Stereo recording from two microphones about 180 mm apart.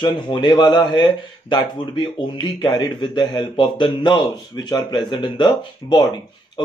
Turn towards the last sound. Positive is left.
turn(degrees=25)  # may be behind; listen again after turning